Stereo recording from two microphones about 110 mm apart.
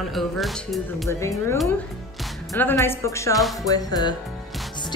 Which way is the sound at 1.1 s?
25° left (ahead or behind).